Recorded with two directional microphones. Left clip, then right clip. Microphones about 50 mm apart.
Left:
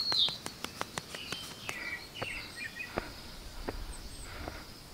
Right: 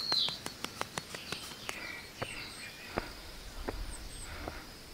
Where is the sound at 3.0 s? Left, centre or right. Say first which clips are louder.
Right 1 dB; right.